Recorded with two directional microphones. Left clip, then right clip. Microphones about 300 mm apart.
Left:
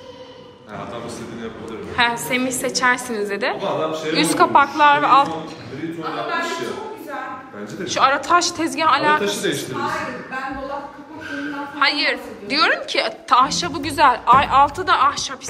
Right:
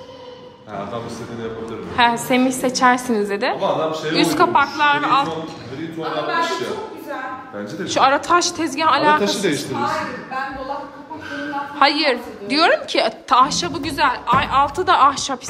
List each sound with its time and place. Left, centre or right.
2.0 s a woman's voice: centre
7.8 s a woman's voice: centre
9.2 s a man's voice: right
11.8 s a woman's voice: centre